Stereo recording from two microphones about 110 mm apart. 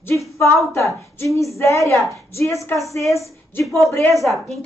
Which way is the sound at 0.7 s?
25° left (ahead or behind).